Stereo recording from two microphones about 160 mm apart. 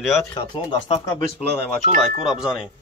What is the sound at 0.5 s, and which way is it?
Speech, 30° left (ahead or behind).